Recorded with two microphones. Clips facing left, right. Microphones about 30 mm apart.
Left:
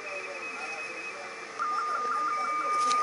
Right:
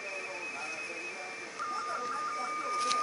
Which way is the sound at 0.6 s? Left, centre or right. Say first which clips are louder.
Left 2 dB; centre.